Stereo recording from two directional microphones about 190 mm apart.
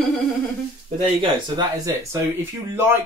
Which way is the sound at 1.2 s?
20° right (ahead or behind).